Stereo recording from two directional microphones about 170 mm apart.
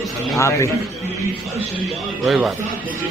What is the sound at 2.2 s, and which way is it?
Speech, centre (ahead or behind).